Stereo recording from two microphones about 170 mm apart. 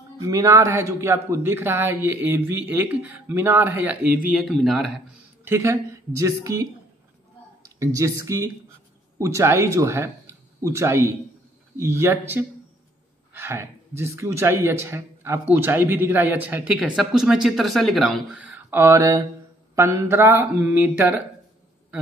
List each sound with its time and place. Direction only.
0.2 s a man's voice: 20° right (ahead or behind); by 4.9 s centre (ahead or behind)
5.4 s a man's voice: 15° right (ahead or behind); by 18.2 s centre (ahead or behind)
18.3 s a sound: 10° right (ahead or behind)
19.7 s a man's voice: 15° right (ahead or behind)